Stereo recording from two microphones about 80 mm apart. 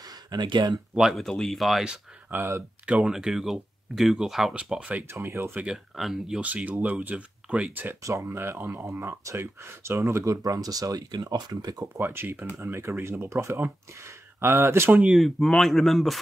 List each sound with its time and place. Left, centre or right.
0.0 s a sound: right
0.9 s speech: centre
1.2 s speech: centre
2.3 s speech: right
2.9 s speech: centre
4.6 s speech: centre
5.0 s speech: right
5.9 s speech: centre
6.4 s speech: centre
8.0 s speech: right
12.0 s speech: right
15.1 s speech: centre